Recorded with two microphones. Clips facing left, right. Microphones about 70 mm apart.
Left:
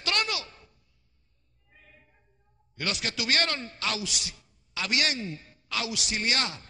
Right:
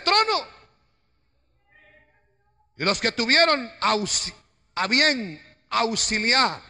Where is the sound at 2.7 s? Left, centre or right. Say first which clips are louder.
Right 8 dB; right.